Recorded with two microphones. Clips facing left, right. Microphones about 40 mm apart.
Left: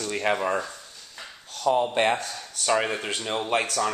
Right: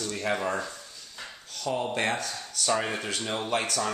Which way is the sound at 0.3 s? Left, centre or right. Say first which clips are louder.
Left 4 dB; left.